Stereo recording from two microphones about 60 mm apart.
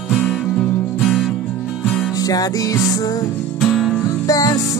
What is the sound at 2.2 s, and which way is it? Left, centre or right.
Music, left.